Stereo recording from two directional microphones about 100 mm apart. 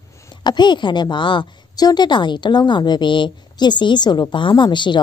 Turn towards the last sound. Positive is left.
turn(degrees=50)  # may be behind; listen again after turning